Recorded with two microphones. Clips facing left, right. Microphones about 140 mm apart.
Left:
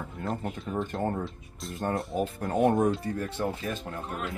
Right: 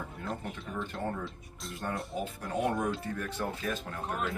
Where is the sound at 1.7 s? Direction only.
45° left (ahead or behind).